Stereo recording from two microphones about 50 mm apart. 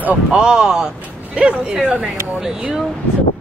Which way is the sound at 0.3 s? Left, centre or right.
Centre.